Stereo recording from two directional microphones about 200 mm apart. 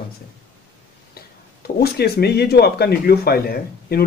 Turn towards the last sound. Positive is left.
turn(degrees=50)  # may be behind; listen again after turning